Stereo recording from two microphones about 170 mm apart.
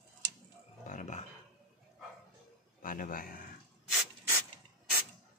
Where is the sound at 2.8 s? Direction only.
55° left (ahead or behind).